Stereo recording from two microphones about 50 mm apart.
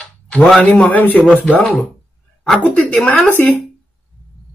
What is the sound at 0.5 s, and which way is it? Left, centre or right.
Speech, left.